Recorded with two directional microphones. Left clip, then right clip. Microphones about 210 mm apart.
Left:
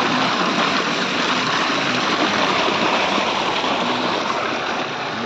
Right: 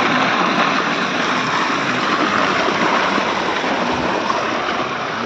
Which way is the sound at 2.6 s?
25° right (ahead or behind).